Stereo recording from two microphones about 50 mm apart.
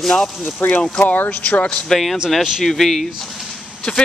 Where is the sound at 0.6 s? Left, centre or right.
Left.